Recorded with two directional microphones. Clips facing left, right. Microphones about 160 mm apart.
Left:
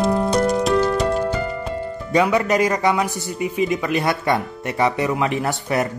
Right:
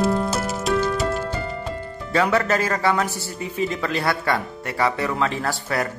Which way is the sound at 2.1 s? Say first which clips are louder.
Left 3 dB; 15° left (ahead or behind).